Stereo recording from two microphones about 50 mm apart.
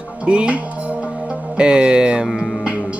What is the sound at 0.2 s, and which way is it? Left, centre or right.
Music, right.